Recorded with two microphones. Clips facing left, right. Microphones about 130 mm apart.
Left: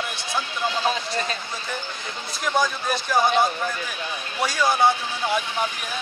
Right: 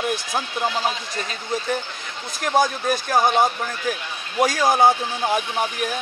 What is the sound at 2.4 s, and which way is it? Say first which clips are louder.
A man's voice: right 4 dB; 45° right (ahead or behind).